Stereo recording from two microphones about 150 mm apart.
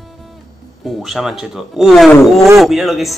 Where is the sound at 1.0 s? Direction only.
Centre (ahead or behind).